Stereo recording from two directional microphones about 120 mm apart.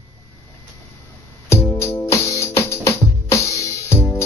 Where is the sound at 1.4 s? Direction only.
20° left (ahead or behind).